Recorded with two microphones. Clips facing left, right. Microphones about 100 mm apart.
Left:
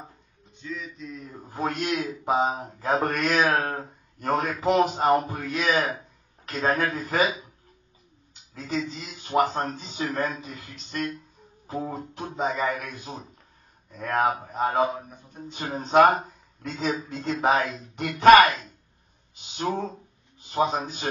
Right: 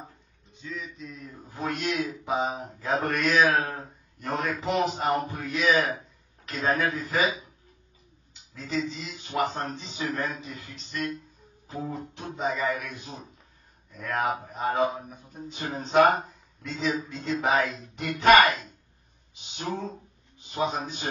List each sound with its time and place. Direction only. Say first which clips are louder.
0.5 s speech: left 2 dB; centre (ahead or behind)
1.2 s a man's voice: left 4 dB; 40° left (ahead or behind)
8.3 s a sound: left 2 dB; 45° left (ahead or behind)
8.9 s speech: left 6 dB; 40° left (ahead or behind)
11.6 s a man's voice: left 3 dB; 40° left (ahead or behind)
14.9 s speech: left 1 dB; centre (ahead or behind)
15.5 s a man's voice: left 3 dB; 45° left (ahead or behind)